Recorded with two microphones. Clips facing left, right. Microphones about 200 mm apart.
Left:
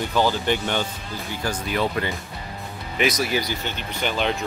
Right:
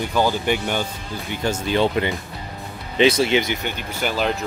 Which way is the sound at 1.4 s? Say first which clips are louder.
Right 5 dB; 25° right (ahead or behind).